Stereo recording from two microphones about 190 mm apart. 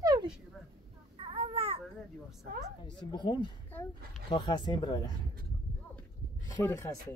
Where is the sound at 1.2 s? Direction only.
30° right (ahead or behind).